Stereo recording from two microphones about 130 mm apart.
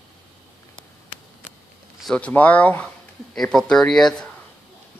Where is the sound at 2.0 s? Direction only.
10° left (ahead or behind).